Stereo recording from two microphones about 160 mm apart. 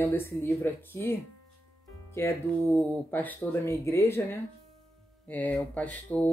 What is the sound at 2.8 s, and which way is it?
A woman's voice, 10° left (ahead or behind).